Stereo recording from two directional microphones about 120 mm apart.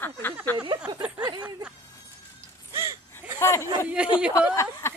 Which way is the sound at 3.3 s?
25° left (ahead or behind).